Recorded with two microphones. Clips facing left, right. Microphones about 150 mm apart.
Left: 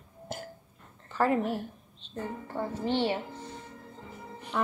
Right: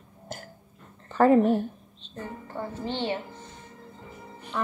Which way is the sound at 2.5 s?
10° left (ahead or behind).